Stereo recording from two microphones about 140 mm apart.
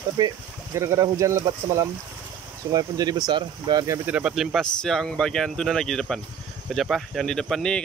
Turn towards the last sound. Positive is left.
turn(degrees=5)  # may be behind; listen again after turning